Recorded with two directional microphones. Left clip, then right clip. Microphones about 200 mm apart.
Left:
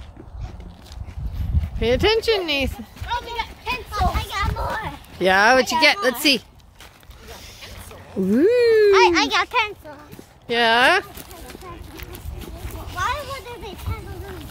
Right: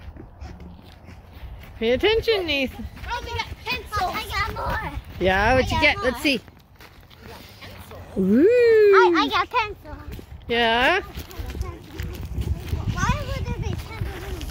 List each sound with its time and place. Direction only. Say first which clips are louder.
1.8 s speech: left 1 dB; 10° left (ahead or behind)
3.1 s livestock: left 3 dB; 10° right (ahead or behind)
3.9 s children playing: left 1 dB; centre (ahead or behind)
5.8 s speech: left 3 dB; 15° left (ahead or behind)
8.3 s speech: even; 5° left (ahead or behind)
12.8 s a sound: left 2 dB; 5° left (ahead or behind)